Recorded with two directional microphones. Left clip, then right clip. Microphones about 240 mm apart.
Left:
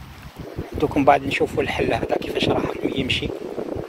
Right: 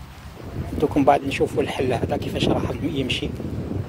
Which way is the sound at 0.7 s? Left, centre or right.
Centre.